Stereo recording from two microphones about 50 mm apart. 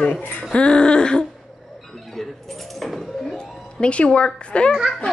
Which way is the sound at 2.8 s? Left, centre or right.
Centre.